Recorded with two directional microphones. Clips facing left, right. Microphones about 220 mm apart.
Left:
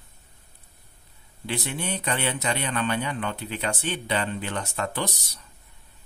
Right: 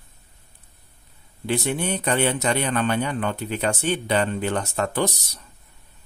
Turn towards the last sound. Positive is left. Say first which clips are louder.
# right 6 dB
turn(degrees=-45)  # may be behind; listen again after turning